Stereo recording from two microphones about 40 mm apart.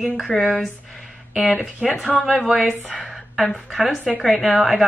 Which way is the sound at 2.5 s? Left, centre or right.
Right.